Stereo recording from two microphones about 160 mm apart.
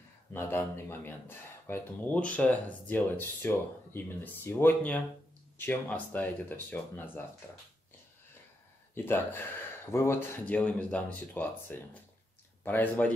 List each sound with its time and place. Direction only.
0.3 s speech: 15° left (ahead or behind)
8.9 s speech: 15° left (ahead or behind)